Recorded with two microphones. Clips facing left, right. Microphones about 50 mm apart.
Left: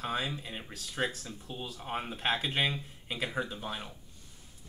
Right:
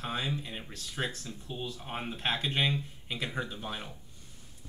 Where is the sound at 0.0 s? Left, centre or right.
Centre.